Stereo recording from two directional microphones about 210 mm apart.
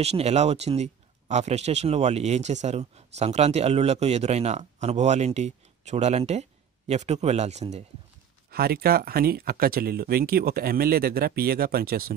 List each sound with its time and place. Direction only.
0.0 s speech: 30° right (ahead or behind)
8.5 s speech: 45° right (ahead or behind)